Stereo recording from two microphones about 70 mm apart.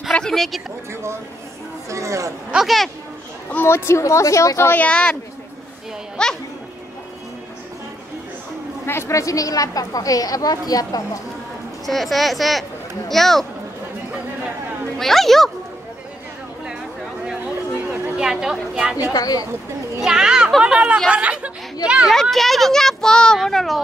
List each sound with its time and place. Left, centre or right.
0.1 s a sound: centre
1.9 s speech: right
2.5 s speech: centre
3.6 s a woman's voice: left
4.6 s speech: left
6.2 s a child's voice: centre
8.8 s a woman's voice: left
11.8 s speech: centre
15.0 s speech: centre
18.1 s speech: centre
19.0 s a woman's voice: left
20.0 s a child's voice: centre
21.1 s chatter: centre
22.0 s speech: centre